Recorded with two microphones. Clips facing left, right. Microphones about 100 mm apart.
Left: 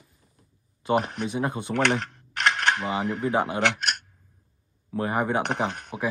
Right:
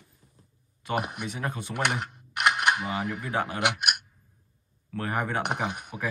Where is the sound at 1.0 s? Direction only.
10° right (ahead or behind).